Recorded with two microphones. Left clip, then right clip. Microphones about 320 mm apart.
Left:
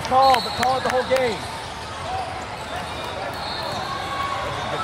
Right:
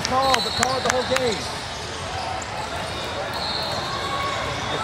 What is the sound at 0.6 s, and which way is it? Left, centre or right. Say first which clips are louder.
Speech: left 1 dB; right.